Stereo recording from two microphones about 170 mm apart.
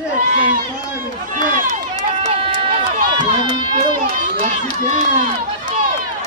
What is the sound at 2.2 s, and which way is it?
Run, 35° right (ahead or behind).